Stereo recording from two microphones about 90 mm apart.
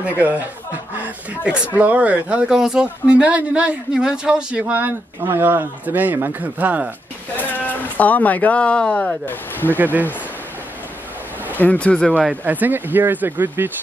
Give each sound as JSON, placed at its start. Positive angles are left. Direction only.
{"t": 0.0, "sound": "speech", "side_deg": -20}
{"t": 5.2, "sound": "speech", "side_deg": -25}
{"t": 7.3, "sound": "speech", "side_deg": 20}
{"t": 11.6, "sound": "speech", "side_deg": 15}
{"t": 12.4, "sound": "speech", "side_deg": -20}